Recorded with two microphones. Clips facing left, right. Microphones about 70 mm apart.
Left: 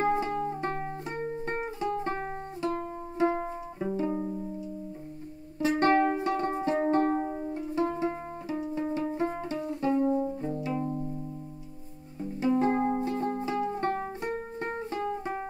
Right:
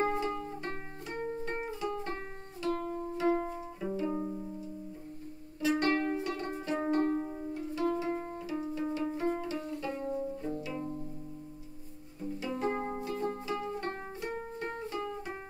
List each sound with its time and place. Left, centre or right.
0.0 s music: left
4.2 s music: centre
5.6 s music: left
7.2 s music: left
7.5 s music: left
12.2 s music: left